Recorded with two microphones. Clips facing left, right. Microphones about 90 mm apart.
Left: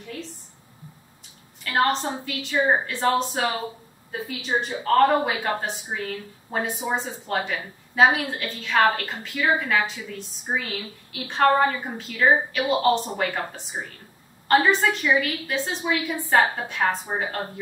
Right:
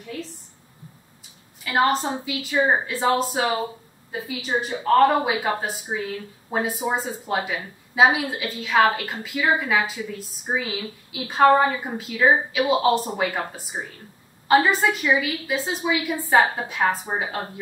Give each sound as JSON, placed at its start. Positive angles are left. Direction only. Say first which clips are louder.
{"t": 1.6, "sound": "speech", "louder": "right 2 dB", "side_deg": -5}